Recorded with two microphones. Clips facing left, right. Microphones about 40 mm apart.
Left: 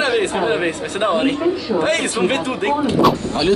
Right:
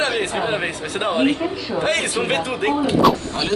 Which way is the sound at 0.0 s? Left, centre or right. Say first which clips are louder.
Left 3 dB; centre.